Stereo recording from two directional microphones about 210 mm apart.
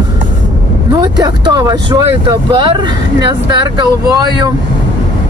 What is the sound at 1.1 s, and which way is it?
Speech, 20° right (ahead or behind).